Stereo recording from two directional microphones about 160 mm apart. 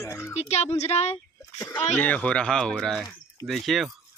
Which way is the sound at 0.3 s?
45° left (ahead or behind).